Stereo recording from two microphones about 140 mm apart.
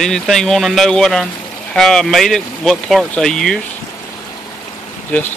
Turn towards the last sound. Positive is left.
turn(degrees=10)  # may be behind; listen again after turning